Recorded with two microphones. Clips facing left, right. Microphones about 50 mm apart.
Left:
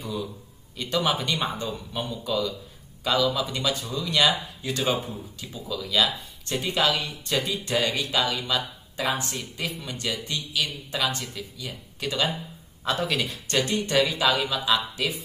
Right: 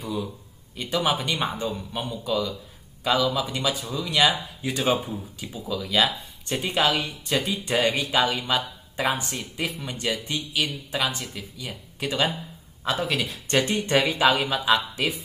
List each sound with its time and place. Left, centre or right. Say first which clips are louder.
0.7 s speech: right 1 dB; centre
5.5 s speech: right 2 dB; centre
6.9 s speech: right 2 dB; centre
7.6 s speech: right 2 dB; centre
12.8 s speech: even; centre
13.7 s speech: right 1 dB; right